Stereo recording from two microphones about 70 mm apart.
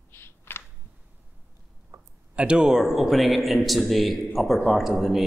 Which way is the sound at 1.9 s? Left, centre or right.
Right.